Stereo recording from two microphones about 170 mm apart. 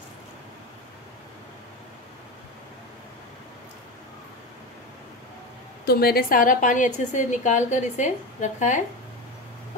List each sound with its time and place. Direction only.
5.9 s a woman's voice: 60° left (ahead or behind); by 8.8 s 45° left (ahead or behind)